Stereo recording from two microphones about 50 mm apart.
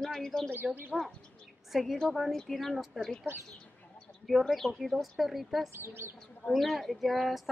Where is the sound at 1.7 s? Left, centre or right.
Centre.